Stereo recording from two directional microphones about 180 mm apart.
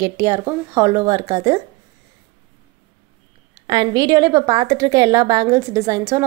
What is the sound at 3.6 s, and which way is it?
A woman's voice, 20° right (ahead or behind).